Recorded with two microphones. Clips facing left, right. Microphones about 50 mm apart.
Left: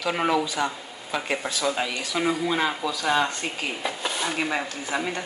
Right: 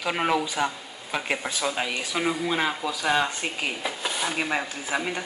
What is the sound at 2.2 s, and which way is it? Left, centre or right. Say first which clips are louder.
Speech: left 2 dB; centre.